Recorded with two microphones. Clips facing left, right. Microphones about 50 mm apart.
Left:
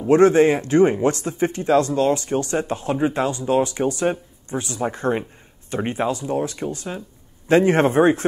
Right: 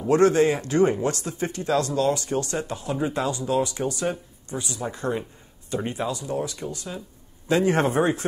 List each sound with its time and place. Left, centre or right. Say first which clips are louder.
0.1 s speech: left 5 dB; left